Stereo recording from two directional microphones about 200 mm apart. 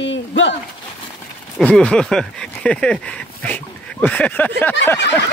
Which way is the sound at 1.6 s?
5° left (ahead or behind).